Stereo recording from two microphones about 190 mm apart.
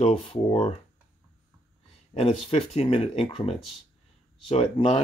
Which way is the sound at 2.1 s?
35° left (ahead or behind).